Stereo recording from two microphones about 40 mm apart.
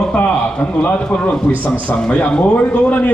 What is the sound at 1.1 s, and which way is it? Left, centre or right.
A man's voice, left.